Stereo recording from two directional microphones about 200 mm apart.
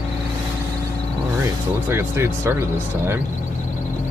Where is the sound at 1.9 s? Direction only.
15° right (ahead or behind).